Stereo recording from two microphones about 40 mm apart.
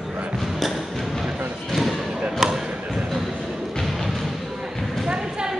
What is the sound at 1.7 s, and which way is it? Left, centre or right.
Thump, centre.